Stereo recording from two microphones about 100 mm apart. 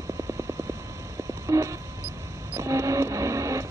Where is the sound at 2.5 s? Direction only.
30° right (ahead or behind).